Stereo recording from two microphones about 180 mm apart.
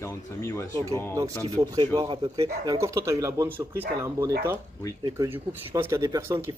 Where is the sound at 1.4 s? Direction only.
20° right (ahead or behind).